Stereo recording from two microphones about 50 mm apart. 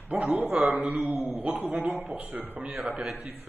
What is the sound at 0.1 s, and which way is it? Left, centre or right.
A man's voice, right.